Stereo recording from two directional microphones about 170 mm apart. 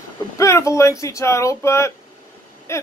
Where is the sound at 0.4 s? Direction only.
15° left (ahead or behind).